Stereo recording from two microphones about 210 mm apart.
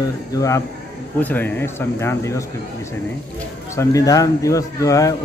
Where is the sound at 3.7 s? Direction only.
15° left (ahead or behind).